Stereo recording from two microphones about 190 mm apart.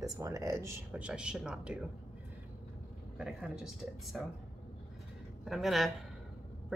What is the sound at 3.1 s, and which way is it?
A woman's voice, 5° right (ahead or behind).